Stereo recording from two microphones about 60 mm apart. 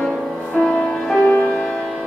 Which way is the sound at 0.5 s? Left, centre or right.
Centre.